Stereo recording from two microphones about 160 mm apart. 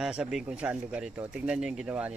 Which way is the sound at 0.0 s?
5° right (ahead or behind).